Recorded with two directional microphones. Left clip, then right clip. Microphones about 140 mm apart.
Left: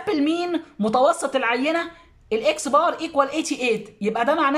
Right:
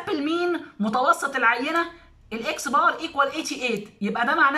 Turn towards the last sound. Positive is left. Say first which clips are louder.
# even
turn(degrees=20)  # may be behind; listen again after turning